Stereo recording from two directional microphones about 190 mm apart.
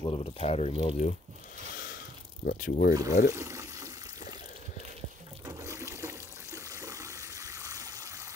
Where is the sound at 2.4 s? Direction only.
50° left (ahead or behind).